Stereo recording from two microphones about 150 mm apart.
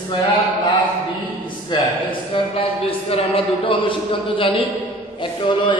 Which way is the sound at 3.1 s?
35° left (ahead or behind).